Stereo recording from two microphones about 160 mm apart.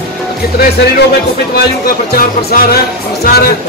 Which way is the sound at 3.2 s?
75° left (ahead or behind).